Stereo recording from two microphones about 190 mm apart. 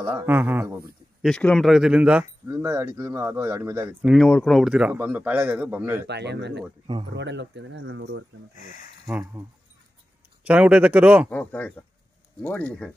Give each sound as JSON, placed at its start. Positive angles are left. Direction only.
{"t": 0.0, "sound": "speech", "side_deg": -15}
{"t": 1.2, "sound": "speech", "side_deg": 5}
{"t": 4.0, "sound": "speech", "side_deg": 0}
{"t": 6.0, "sound": "speech", "side_deg": -65}
{"t": 9.0, "sound": "speech", "side_deg": -15}
{"t": 10.4, "sound": "speech", "side_deg": -5}
{"t": 11.2, "sound": "speech", "side_deg": 10}